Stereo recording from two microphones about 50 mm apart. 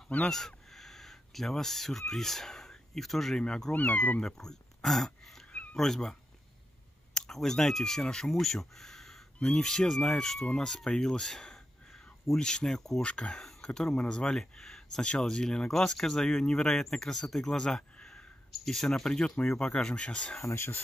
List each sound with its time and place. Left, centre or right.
0.3 s speech: centre
3.3 s speech: centre
3.7 s speech: left
4.2 s speech: centre
5.5 s cat: left
5.8 s speech: centre
7.2 s speech: centre
13.0 s speech: left
13.4 s a sound: centre
13.7 s speech: centre
18.5 s speech: centre
20.4 s speech: left